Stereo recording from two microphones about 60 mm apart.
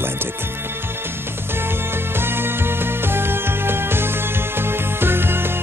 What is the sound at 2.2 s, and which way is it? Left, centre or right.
Music, right.